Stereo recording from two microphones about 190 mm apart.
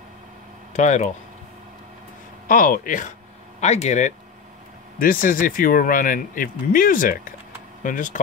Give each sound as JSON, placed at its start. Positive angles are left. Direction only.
{"t": 0.7, "sound": "speech", "side_deg": 40}
{"t": 2.4, "sound": "speech", "side_deg": 45}
{"t": 4.9, "sound": "speech", "side_deg": 50}